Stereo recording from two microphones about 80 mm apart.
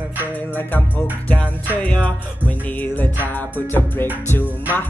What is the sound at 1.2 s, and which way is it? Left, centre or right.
Music, centre.